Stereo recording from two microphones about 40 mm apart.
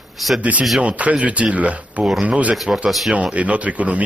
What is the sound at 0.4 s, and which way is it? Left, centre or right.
Speech, right.